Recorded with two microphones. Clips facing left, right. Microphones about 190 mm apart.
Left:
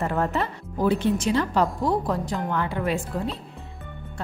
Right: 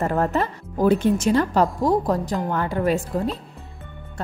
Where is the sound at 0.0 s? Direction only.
40° right (ahead or behind).